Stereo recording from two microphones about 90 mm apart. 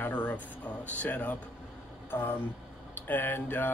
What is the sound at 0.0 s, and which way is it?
Speech, 20° left (ahead or behind).